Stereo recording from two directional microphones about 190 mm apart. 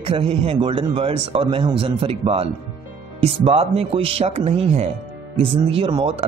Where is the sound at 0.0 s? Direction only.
30° right (ahead or behind).